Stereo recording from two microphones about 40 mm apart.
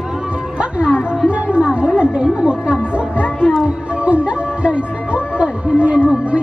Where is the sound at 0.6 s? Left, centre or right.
Right.